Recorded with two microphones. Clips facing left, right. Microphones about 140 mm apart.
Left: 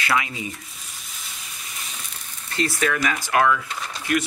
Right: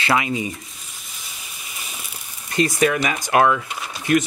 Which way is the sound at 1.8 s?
10° right (ahead or behind).